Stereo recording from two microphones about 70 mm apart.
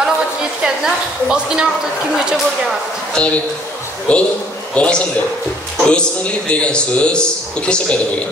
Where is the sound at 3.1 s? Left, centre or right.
Centre.